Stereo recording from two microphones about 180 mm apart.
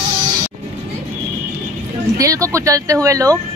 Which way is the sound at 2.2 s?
20° right (ahead or behind).